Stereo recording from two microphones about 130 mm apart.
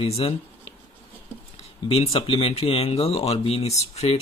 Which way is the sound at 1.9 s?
45° left (ahead or behind).